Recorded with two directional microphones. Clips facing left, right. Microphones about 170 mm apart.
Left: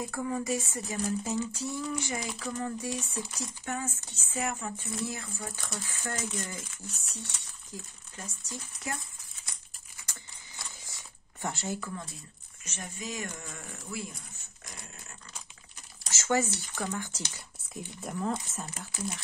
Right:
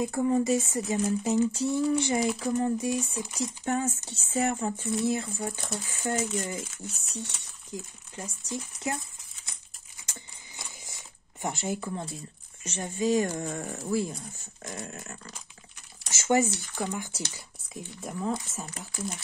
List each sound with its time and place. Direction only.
0.0 s speech: 25° right (ahead or behind)
3.6 s speech: 30° right (ahead or behind)
7.7 s speech: 20° right (ahead or behind)
9.5 s a sound: 20° right (ahead or behind)
12.6 s speech: 30° right (ahead or behind)
14.7 s dog: 55° right (ahead or behind)
16.1 s a sound: 20° right (ahead or behind)
16.5 s speech: 15° right (ahead or behind)
17.7 s speech: centre (ahead or behind)